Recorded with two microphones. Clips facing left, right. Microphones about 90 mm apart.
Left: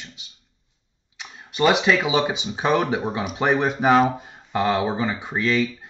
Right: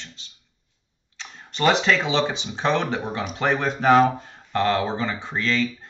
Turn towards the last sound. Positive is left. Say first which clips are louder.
# left 2 dB
turn(degrees=10)  # may be behind; listen again after turning